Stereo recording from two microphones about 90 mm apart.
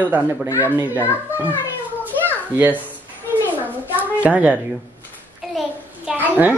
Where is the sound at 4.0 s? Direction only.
15° right (ahead or behind).